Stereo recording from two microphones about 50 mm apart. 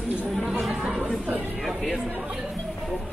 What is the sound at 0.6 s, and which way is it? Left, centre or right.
Chatter, centre.